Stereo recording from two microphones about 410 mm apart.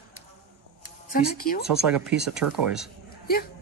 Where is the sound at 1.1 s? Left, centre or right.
Left.